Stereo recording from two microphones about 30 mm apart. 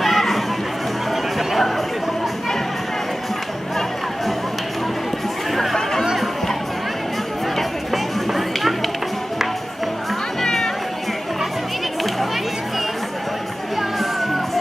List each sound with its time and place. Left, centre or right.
0.0 s a sound: centre
5.5 s chatter: centre
7.5 s chop: centre
10.4 s music: centre